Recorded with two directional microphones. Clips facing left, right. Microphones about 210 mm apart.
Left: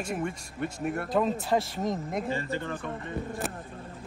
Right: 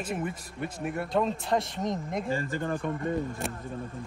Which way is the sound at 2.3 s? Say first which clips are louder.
Right 2 dB; 45° right (ahead or behind).